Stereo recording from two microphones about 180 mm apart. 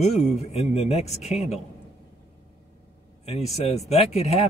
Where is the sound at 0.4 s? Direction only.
35° left (ahead or behind).